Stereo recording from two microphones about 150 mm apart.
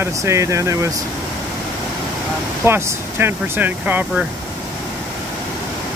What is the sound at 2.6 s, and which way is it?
Speech, 15° right (ahead or behind).